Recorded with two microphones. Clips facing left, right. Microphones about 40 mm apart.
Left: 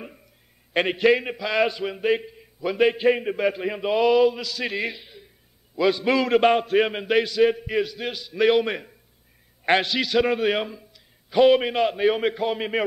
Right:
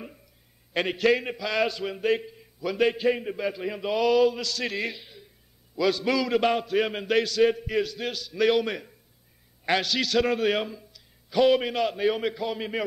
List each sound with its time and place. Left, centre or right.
0.7 s a man's voice: left
6.1 s a sound: left
6.9 s a man's voice: centre
9.9 s a man's voice: centre